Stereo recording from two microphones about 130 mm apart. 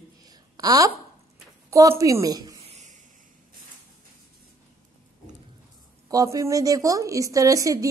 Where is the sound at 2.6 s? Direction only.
55° right (ahead or behind).